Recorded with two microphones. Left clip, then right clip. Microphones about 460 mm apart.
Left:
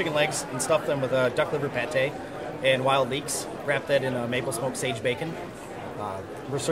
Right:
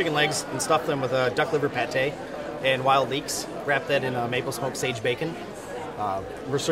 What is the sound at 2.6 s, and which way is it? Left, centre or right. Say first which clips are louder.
A man's voice: right 1 dB; left.